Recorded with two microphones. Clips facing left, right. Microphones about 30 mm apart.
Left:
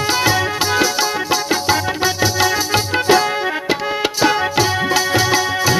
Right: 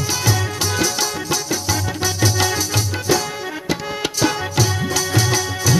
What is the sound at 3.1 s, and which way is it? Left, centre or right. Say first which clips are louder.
Music: left 6 dB; left.